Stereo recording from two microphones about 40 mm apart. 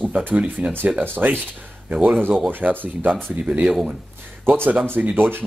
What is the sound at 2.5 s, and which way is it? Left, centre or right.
Speech, right.